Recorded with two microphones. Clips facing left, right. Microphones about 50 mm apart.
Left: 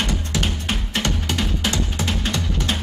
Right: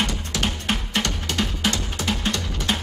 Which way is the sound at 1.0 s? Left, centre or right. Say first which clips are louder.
Left 3 dB; centre.